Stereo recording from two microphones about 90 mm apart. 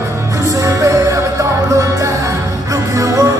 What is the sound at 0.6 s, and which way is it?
Music, 40° right (ahead or behind).